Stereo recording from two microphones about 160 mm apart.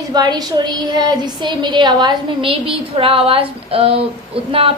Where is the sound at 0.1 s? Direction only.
25° right (ahead or behind).